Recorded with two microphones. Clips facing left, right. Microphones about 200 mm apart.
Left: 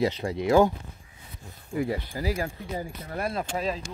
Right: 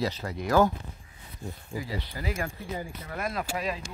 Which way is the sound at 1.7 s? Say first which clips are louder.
Left 8 dB; 55° left (ahead or behind).